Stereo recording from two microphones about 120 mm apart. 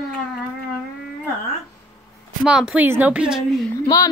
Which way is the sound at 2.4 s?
5° right (ahead or behind).